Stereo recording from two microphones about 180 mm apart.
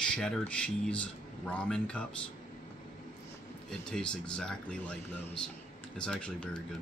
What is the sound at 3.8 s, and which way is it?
Speech, 5° left (ahead or behind).